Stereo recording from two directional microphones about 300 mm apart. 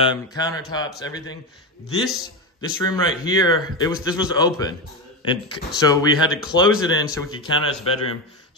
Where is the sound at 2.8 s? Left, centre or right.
Centre.